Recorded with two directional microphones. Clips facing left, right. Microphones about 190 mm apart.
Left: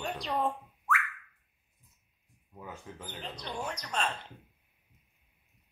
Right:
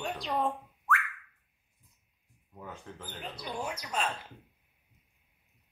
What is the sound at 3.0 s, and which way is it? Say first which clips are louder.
Speech: right 1 dB; 10° right (ahead or behind).